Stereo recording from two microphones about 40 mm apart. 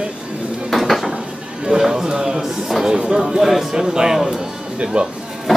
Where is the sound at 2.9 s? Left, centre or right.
Centre.